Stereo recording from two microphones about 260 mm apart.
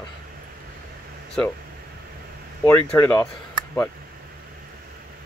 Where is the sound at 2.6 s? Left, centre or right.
Centre.